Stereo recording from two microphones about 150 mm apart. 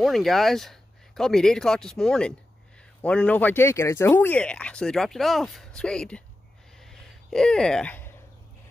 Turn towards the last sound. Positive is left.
turn(degrees=5)  # may be behind; listen again after turning